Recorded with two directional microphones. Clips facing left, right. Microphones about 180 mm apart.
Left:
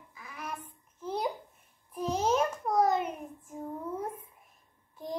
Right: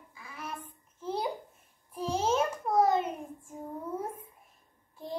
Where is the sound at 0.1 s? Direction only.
30° right (ahead or behind).